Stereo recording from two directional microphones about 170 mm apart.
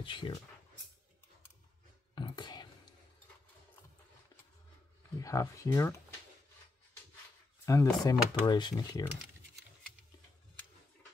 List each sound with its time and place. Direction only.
0.0 s speech: 30° left (ahead or behind)
2.1 s whispering: 25° left (ahead or behind)
5.2 s speech: 20° left (ahead or behind)
7.6 s speech: 20° left (ahead or behind)